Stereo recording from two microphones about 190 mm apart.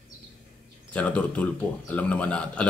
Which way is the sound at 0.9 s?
10° left (ahead or behind).